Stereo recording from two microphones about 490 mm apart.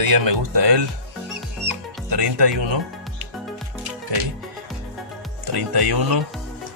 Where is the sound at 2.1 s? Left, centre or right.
Right.